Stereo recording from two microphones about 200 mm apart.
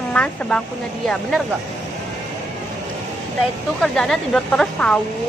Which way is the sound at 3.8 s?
5° left (ahead or behind).